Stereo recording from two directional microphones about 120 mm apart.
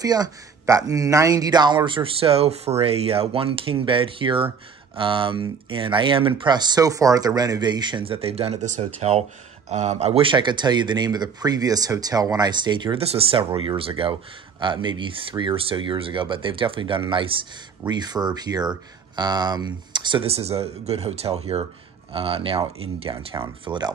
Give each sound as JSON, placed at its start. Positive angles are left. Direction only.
{"t": 0.0, "sound": "speech", "side_deg": -30}
{"t": 1.9, "sound": "speech", "side_deg": -50}
{"t": 8.2, "sound": "speech", "side_deg": -55}
{"t": 10.2, "sound": "speech", "side_deg": -40}
{"t": 13.0, "sound": "speech", "side_deg": -55}
{"t": 17.8, "sound": "speech", "side_deg": -35}
{"t": 20.2, "sound": "speech", "side_deg": -55}